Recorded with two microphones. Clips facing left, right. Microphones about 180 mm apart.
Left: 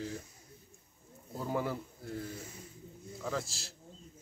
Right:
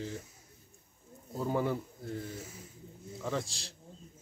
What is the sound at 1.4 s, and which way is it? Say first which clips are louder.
A man's voice: right 3 dB; centre (ahead or behind).